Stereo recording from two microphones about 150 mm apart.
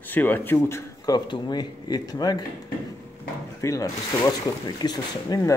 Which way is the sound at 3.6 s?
25° left (ahead or behind).